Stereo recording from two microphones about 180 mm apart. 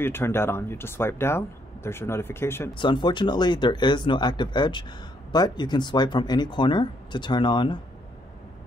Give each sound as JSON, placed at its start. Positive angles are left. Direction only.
{"t": 0.0, "sound": "speech", "side_deg": 15}
{"t": 2.7, "sound": "speech", "side_deg": 25}